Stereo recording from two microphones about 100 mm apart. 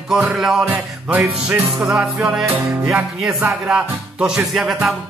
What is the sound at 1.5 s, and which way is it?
Music, 25° right (ahead or behind).